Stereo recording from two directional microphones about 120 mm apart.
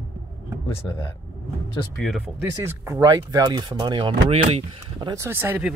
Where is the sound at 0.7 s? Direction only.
55° left (ahead or behind).